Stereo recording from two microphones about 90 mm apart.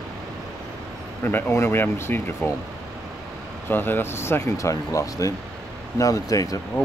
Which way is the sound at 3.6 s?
20° left (ahead or behind).